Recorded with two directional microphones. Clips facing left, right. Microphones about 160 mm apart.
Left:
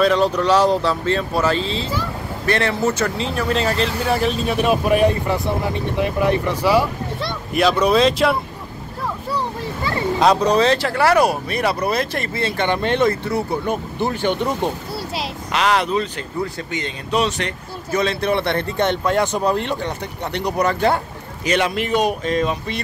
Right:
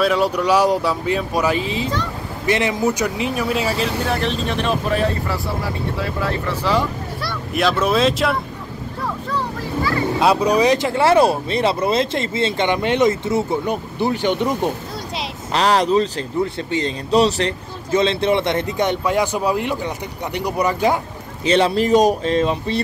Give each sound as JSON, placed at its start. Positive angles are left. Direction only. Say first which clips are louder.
{"t": 0.0, "sound": "speech", "louder": "left 1 dB", "side_deg": -10}
{"t": 7.8, "sound": "speech", "louder": "left 2 dB", "side_deg": 0}
{"t": 10.1, "sound": "speech", "louder": "left 1 dB", "side_deg": -5}
{"t": 15.5, "sound": "speech", "louder": "right 3 dB", "side_deg": -35}
{"t": 21.5, "sound": "speech", "louder": "right 4 dB", "side_deg": -30}